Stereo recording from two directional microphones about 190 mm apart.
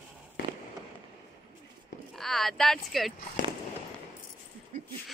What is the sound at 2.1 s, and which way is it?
Speech, centre (ahead or behind).